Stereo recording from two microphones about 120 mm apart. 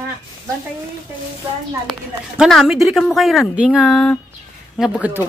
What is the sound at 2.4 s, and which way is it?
A woman's voice, centre (ahead or behind).